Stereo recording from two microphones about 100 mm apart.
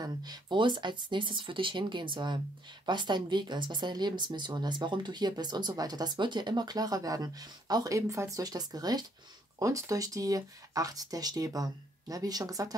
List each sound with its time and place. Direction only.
0.0 s speech: 40° right (ahead or behind)